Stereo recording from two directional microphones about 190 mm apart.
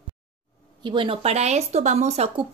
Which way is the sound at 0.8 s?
25° right (ahead or behind).